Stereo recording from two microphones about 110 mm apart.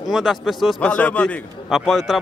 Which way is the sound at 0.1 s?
5° right (ahead or behind).